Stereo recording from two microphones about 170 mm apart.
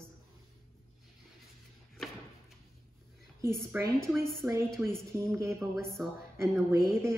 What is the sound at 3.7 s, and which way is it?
Speech, 10° right (ahead or behind).